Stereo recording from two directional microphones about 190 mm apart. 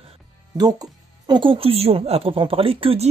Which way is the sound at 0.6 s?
20° right (ahead or behind).